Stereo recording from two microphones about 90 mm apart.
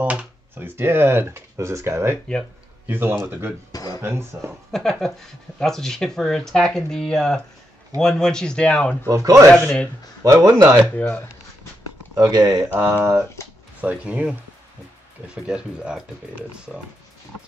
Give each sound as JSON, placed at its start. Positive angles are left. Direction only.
{"t": 0.0, "sound": "speech", "side_deg": -15}
{"t": 3.7, "sound": "a sound", "side_deg": 45}
{"t": 4.0, "sound": "speech", "side_deg": -30}
{"t": 4.7, "sound": "speech", "side_deg": 5}
{"t": 9.1, "sound": "speech", "side_deg": -40}
{"t": 9.5, "sound": "speech", "side_deg": 10}
{"t": 10.2, "sound": "speech", "side_deg": -40}
{"t": 10.5, "sound": "speech", "side_deg": -30}
{"t": 11.0, "sound": "speech", "side_deg": 15}
{"t": 12.2, "sound": "speech", "side_deg": -45}
{"t": 12.6, "sound": "speech", "side_deg": -20}
{"t": 15.4, "sound": "speech", "side_deg": -10}